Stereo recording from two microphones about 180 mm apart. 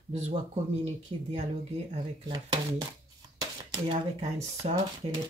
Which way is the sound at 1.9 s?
25° right (ahead or behind).